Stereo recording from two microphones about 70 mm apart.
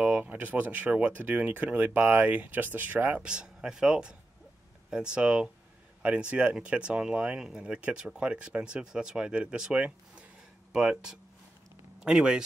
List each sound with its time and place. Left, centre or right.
0.0 s speech: right
3.2 s speech: centre